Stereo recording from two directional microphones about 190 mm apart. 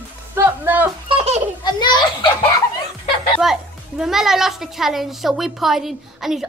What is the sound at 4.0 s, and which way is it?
A woman's voice, centre (ahead or behind).